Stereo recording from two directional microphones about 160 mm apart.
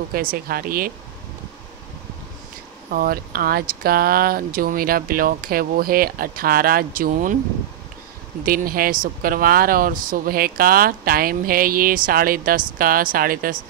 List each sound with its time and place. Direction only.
0.1 s speech: 65° right (ahead or behind)
2.9 s speech: 65° right (ahead or behind)
8.5 s speech: 65° right (ahead or behind)